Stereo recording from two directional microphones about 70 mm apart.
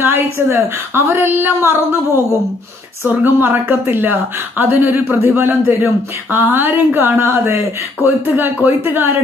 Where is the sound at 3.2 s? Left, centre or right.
Right.